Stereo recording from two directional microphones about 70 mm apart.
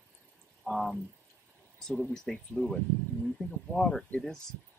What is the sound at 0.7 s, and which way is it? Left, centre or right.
Speech, centre.